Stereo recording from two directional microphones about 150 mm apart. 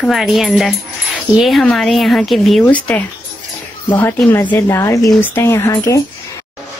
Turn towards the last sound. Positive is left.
turn(degrees=20)  # may be behind; listen again after turning